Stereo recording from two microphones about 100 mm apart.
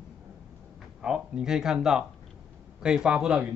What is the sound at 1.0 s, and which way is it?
Speech, 5° right (ahead or behind).